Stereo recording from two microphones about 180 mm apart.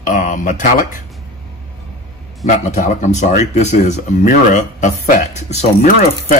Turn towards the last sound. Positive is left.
turn(degrees=45)  # may be behind; listen again after turning